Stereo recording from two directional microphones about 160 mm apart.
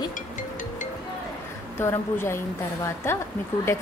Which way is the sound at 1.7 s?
15° left (ahead or behind).